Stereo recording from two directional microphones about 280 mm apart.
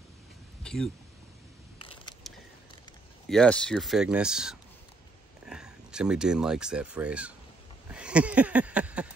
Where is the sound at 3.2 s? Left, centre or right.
Centre.